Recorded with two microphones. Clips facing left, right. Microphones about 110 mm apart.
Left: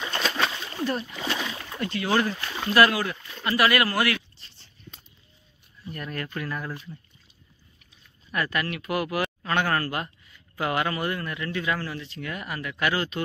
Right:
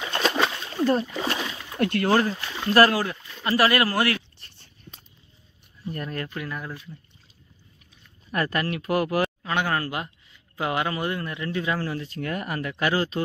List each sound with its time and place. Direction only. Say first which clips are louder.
0.4 s splash: right 3 dB; 5° right (ahead or behind)
0.8 s speech: right 6 dB; 35° right (ahead or behind)
1.8 s speech: right 7 dB; 60° right (ahead or behind)
2.0 s speech: even; 35° right (ahead or behind)
4.4 s a sound: right 1 dB; 55° right (ahead or behind)
5.9 s speech: right 3 dB; 30° right (ahead or behind)
6.3 s speech: left 1 dB; 15° right (ahead or behind)
8.3 s speech: right 2 dB; 35° right (ahead or behind)
9.4 s speech: even; 15° right (ahead or behind); by 13.2 s 30° right (ahead or behind)